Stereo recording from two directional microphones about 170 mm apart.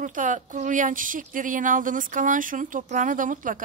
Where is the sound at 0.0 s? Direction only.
50° right (ahead or behind).